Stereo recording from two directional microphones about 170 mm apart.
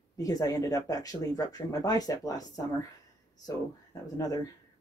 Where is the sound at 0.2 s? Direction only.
20° left (ahead or behind).